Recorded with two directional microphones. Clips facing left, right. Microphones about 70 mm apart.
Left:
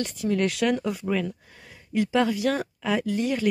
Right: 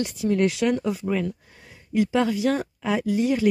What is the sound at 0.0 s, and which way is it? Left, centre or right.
Speech, centre.